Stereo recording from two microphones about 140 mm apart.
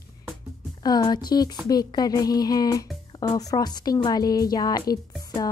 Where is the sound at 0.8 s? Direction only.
30° left (ahead or behind).